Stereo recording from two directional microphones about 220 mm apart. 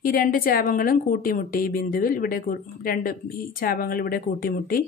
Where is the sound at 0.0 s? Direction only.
40° left (ahead or behind).